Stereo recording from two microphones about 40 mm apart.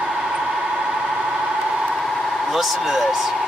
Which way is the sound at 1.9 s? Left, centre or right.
Centre.